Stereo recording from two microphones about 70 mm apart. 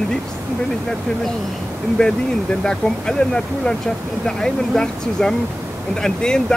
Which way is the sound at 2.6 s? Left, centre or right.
Centre.